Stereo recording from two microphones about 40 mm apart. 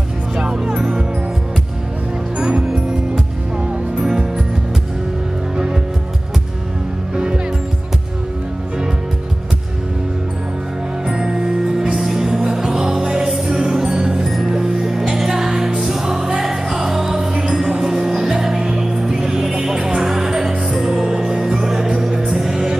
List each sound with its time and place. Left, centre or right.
0.4 s music: centre
2.3 s music: right
3.9 s music: centre
11.1 s music: centre
14.2 s music: centre